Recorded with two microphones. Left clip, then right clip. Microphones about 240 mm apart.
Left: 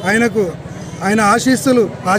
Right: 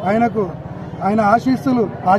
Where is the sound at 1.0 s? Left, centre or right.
Centre.